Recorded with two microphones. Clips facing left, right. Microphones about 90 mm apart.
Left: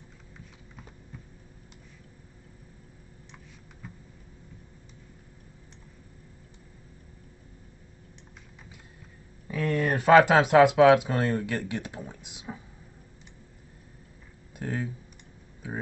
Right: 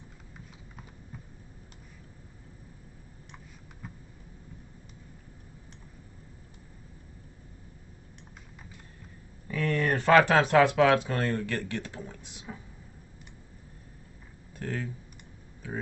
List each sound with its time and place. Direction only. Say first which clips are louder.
9.5 s speech: left 1 dB; 5° left (ahead or behind)
14.5 s speech: left 2 dB; 15° left (ahead or behind)